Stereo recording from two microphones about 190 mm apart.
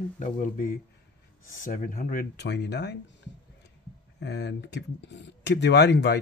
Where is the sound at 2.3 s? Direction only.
65° left (ahead or behind).